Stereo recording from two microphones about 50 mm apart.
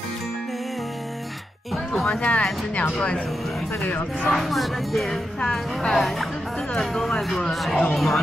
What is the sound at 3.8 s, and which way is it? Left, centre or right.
Speech, left.